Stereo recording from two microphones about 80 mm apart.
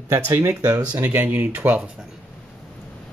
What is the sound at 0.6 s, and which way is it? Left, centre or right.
Speech, right.